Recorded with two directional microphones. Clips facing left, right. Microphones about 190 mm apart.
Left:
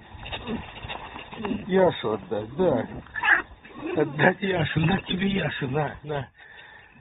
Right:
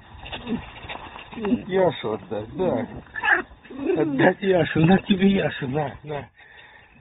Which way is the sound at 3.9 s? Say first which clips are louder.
Right 3 dB; 25° right (ahead or behind).